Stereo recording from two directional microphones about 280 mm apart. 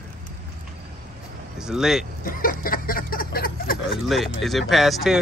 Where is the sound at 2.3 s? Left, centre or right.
Left.